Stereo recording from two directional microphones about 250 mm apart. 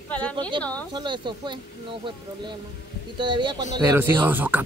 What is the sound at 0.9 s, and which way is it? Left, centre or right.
Speech, centre.